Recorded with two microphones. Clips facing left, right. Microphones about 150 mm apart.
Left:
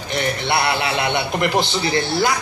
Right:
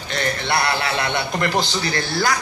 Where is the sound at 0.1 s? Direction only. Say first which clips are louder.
Left 1 dB; 20° left (ahead or behind).